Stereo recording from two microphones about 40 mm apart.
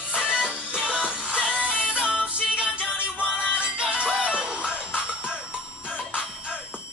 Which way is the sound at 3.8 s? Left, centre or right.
Centre.